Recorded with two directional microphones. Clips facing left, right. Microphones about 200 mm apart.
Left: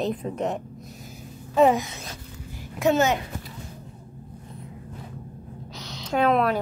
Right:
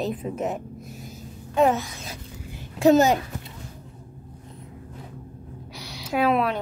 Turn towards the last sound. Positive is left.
turn(degrees=-5)  # may be behind; listen again after turning